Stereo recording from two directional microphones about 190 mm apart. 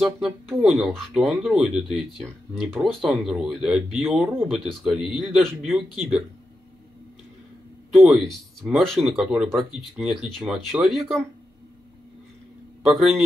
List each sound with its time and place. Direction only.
0.0 s speech: centre (ahead or behind)
7.9 s speech: centre (ahead or behind)
12.8 s speech: centre (ahead or behind)